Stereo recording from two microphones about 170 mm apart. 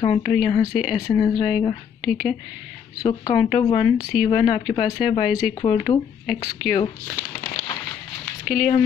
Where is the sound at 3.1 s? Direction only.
25° left (ahead or behind).